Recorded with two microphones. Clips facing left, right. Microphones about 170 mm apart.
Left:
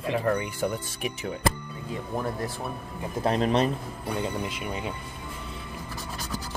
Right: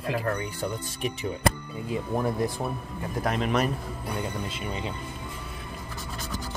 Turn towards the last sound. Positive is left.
turn(degrees=10)  # may be behind; listen again after turning